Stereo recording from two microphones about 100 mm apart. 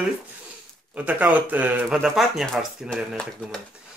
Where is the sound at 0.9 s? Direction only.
15° right (ahead or behind).